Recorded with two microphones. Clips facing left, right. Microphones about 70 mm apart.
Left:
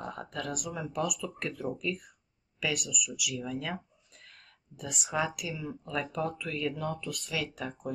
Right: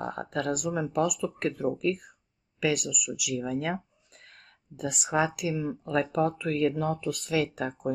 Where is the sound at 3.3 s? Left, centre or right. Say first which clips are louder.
Right 7 dB; right.